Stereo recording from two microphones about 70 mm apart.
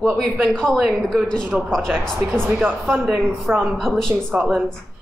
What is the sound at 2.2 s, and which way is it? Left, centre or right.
Speech, right.